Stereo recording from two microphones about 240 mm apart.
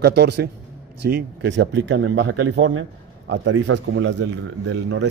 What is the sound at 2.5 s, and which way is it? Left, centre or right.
Speech, right.